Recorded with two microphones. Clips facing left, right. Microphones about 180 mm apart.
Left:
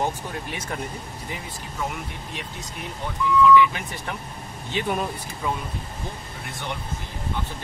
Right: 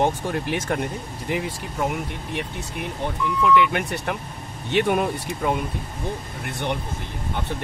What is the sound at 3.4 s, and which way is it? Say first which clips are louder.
Speech: left 1 dB; 65° right (ahead or behind).